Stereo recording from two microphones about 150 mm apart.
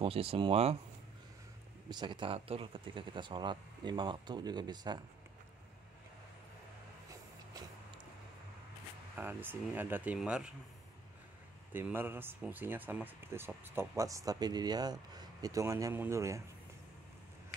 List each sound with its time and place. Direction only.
0.0 s speech: 40° right (ahead or behind)
1.9 s speech: 30° right (ahead or behind)
9.1 s speech: 10° right (ahead or behind)
11.7 s speech: 15° right (ahead or behind)